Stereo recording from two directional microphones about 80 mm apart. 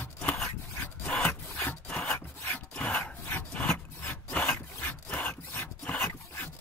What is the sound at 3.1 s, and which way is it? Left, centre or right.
Wood, left.